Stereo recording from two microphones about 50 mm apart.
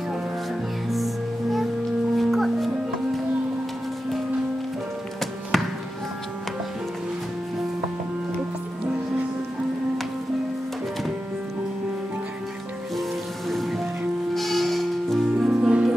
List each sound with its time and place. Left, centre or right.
0.8 s music: centre
5.5 s music: centre
13.5 s music: centre
15.3 s music: centre